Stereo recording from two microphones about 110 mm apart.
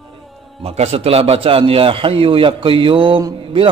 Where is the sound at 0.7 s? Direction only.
70° right (ahead or behind).